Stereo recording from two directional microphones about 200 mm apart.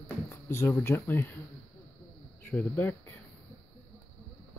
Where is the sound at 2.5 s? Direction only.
10° left (ahead or behind).